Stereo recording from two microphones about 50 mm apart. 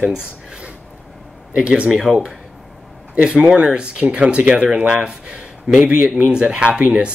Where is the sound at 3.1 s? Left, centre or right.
Right.